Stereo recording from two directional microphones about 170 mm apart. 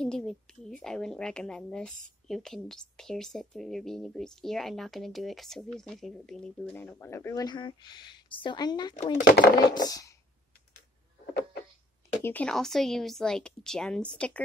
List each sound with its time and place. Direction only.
0.0 s a woman's voice: 5° left (ahead or behind); by 8.9 s 25° left (ahead or behind)
9.2 s speech: 65° left (ahead or behind)
9.8 s speech: 20° left (ahead or behind)
12.2 s a woman's voice: 10° left (ahead or behind)